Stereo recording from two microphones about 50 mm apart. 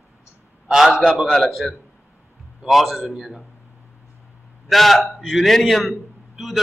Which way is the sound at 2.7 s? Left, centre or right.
Centre.